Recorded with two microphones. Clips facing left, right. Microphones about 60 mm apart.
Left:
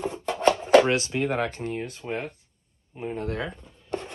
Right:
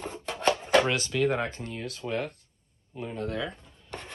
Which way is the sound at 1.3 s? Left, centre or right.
Left.